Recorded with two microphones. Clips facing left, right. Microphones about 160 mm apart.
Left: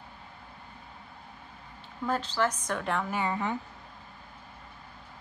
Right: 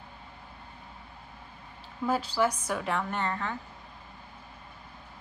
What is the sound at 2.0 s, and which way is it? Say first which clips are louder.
A woman's voice: right 2 dB; 10° right (ahead or behind).